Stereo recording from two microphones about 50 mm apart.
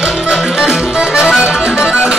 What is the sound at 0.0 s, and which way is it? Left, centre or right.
Music, centre.